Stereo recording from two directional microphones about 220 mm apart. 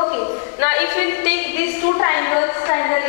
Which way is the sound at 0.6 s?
10° left (ahead or behind).